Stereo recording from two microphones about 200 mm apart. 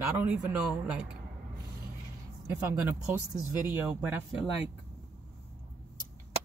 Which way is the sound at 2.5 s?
10° right (ahead or behind).